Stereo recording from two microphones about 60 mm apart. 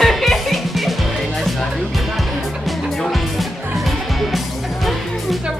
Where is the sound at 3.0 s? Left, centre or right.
Centre.